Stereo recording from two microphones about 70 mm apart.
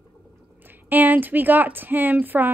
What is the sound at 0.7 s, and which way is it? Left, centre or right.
A woman's voice, right.